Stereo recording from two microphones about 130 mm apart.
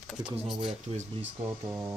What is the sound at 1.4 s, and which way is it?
Speech, 20° right (ahead or behind).